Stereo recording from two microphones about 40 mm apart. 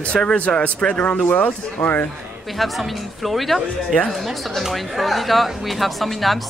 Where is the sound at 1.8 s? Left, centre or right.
Left.